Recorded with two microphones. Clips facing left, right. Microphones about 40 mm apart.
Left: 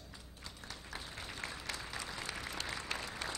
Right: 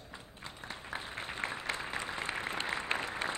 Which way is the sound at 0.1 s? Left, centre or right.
Right.